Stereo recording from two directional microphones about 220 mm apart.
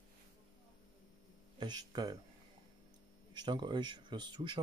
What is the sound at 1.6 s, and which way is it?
Speech, 20° right (ahead or behind).